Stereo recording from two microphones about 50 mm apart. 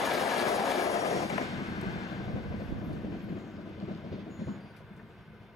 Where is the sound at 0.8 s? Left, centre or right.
Left.